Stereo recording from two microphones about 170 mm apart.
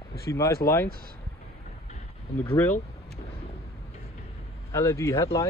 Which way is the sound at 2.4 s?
15° left (ahead or behind).